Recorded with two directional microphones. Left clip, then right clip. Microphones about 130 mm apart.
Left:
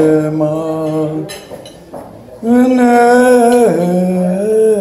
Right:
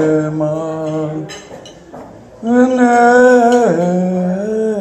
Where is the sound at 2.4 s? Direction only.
35° left (ahead or behind).